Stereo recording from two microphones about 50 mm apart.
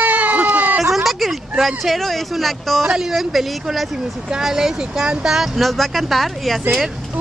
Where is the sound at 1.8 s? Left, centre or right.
Centre.